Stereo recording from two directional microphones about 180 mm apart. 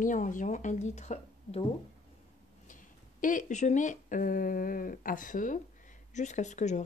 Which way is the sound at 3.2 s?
45° left (ahead or behind).